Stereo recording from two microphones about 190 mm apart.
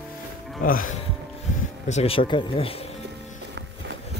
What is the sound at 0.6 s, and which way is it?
Speech, 45° left (ahead or behind).